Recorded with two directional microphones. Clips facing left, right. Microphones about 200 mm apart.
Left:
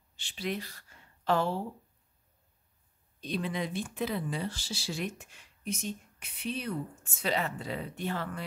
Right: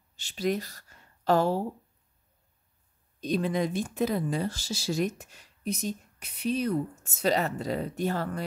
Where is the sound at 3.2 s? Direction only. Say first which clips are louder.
Right 6 dB; 45° right (ahead or behind).